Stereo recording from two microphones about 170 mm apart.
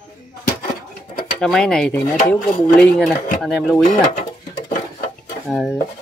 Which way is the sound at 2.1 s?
55° left (ahead or behind).